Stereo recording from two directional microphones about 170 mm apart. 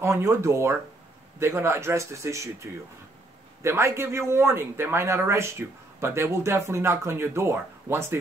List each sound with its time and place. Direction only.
0.0 s speech: 15° right (ahead or behind)